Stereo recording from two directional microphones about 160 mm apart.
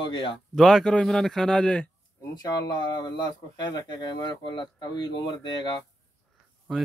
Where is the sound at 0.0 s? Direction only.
30° left (ahead or behind).